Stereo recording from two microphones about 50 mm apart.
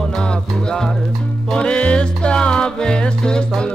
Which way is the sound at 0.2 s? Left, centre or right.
Centre.